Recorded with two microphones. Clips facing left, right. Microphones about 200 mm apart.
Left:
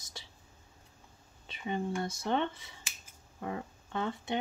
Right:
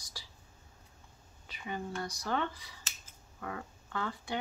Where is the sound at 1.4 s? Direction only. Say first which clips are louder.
Left 5 dB; 25° left (ahead or behind).